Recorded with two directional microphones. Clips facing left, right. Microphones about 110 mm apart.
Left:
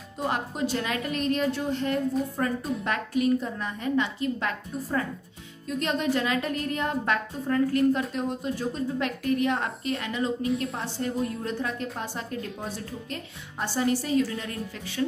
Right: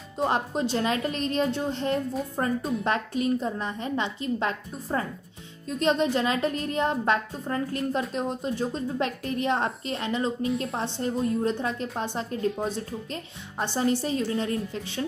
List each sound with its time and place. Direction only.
0.2 s a woman's voice: 25° right (ahead or behind)